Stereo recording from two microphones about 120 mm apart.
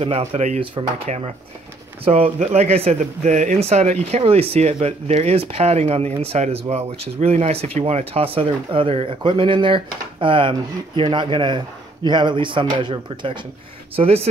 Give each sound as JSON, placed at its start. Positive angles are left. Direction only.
{"t": 0.0, "sound": "speech", "side_deg": -50}
{"t": 4.2, "sound": "speech", "side_deg": -55}
{"t": 13.9, "sound": "speech", "side_deg": -55}